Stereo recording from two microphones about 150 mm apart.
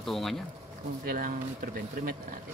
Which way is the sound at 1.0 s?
70° right (ahead or behind).